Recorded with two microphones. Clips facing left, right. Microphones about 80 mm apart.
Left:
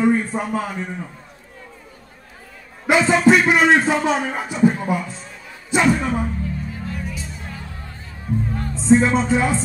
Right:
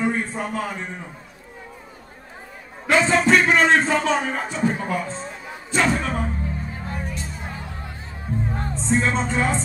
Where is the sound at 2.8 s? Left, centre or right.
Centre.